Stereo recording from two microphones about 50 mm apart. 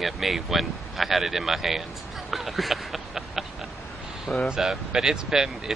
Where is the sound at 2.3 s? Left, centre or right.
Centre.